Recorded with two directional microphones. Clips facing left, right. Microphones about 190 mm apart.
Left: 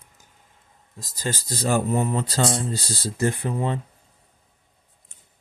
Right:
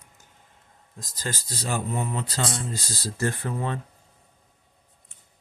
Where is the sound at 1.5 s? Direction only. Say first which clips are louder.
Left 8 dB; 50° left (ahead or behind); by 3.8 s 15° left (ahead or behind).